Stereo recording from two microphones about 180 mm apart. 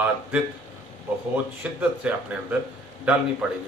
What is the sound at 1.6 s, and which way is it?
A man's voice, 5° right (ahead or behind).